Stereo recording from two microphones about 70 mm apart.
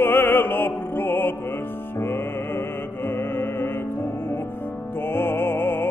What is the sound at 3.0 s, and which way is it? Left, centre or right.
Music, left.